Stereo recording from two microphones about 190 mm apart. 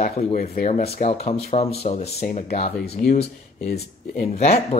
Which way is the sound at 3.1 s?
55° left (ahead or behind).